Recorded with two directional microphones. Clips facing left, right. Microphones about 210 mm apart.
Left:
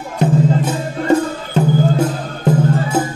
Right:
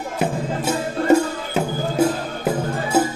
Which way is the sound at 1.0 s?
10° right (ahead or behind).